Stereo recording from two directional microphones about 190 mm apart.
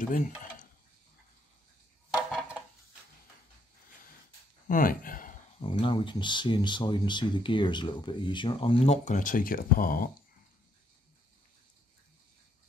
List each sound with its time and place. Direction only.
0.0 s speech: 45° left (ahead or behind)
4.6 s speech: 45° left (ahead or behind)
5.6 s speech: 25° left (ahead or behind); by 10.1 s 50° left (ahead or behind)